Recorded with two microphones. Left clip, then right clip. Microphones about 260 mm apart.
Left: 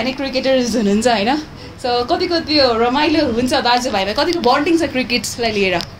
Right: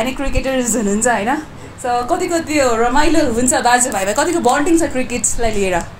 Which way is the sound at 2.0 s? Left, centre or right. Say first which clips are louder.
Even; centre.